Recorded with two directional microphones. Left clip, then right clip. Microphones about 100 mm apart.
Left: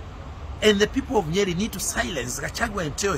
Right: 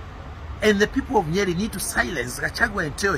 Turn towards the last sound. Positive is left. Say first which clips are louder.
# right 3 dB
turn(degrees=20)  # may be behind; listen again after turning